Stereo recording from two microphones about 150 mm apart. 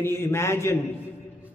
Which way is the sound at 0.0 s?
15° left (ahead or behind).